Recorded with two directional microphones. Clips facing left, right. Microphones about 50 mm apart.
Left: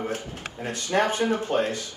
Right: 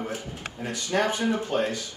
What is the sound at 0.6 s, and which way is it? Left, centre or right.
Speech, left.